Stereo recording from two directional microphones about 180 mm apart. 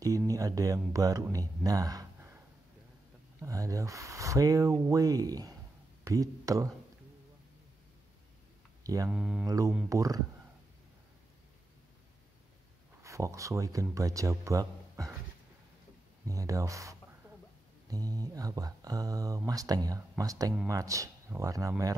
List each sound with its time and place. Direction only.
0.3 s speech: 20° right (ahead or behind)
3.4 s speech: 20° right (ahead or behind)
8.8 s speech: 20° right (ahead or behind)
9.1 s speech: 5° right (ahead or behind)
9.8 s speech: 20° right (ahead or behind)
13.0 s speech: 15° right (ahead or behind)
16.3 s speech: 20° right (ahead or behind)